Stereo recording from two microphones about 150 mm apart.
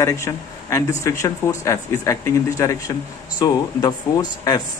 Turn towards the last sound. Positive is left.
turn(degrees=25)  # may be behind; listen again after turning